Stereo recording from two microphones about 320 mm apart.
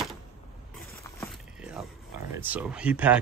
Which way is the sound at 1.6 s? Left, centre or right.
Centre.